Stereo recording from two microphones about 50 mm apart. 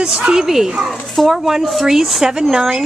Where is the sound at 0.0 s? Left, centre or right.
Centre.